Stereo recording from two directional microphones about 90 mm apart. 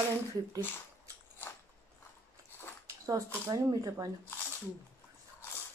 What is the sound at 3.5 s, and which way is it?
Speech, 45° right (ahead or behind).